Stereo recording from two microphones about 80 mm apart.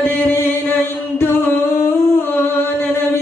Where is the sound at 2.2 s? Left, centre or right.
Left.